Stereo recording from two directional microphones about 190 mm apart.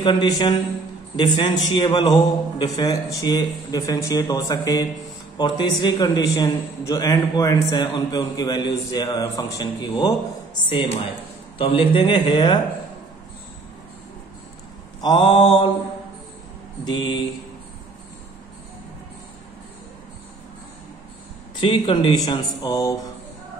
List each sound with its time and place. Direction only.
0.0 s a man's voice: 20° left (ahead or behind)
15.0 s a man's voice: 25° left (ahead or behind)
16.8 s a man's voice: 25° left (ahead or behind)
21.5 s a man's voice: 25° left (ahead or behind)